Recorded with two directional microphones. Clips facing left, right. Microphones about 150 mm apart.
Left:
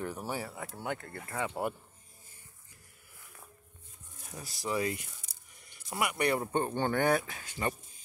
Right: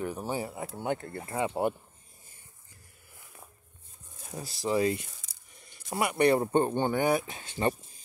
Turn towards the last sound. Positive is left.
turn(degrees=-30)  # may be behind; listen again after turning